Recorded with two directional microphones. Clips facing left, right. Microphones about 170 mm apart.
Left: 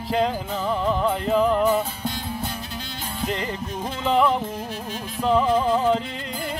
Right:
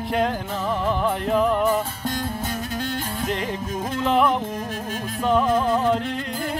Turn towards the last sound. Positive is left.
turn(degrees=0)  # may be behind; listen again after turning